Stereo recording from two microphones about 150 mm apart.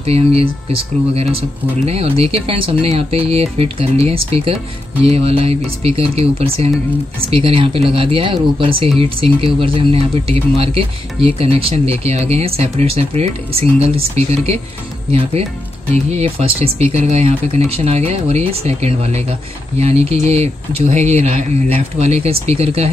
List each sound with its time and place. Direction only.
0.0 s speech: 45° right (ahead or behind)
15.9 s speech: 45° right (ahead or behind)